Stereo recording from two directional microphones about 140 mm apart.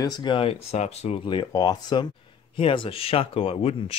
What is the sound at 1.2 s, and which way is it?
Speech, 35° left (ahead or behind).